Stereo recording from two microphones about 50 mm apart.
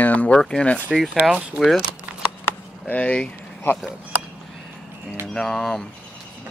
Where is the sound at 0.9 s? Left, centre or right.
Centre.